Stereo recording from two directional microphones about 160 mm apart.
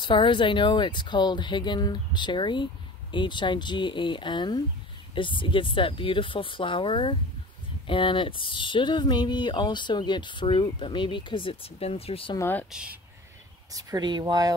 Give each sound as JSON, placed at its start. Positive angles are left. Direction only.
{"t": 0.0, "sound": "speech", "side_deg": 30}
{"t": 12.4, "sound": "speech", "side_deg": 15}
{"t": 12.7, "sound": "speech", "side_deg": -5}
{"t": 13.7, "sound": "speech", "side_deg": -20}